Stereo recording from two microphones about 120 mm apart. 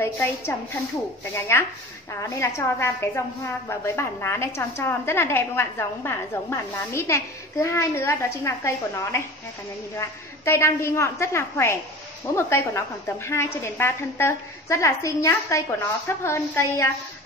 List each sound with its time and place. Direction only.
0.0 s a woman's voice: 20° left (ahead or behind)